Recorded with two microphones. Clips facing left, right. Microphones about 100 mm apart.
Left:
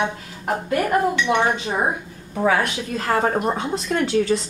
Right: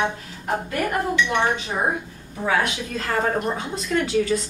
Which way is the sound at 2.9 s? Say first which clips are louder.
Left 3 dB; 30° left (ahead or behind).